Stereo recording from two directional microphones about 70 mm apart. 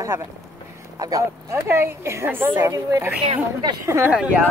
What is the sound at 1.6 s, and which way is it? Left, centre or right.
Speech, right.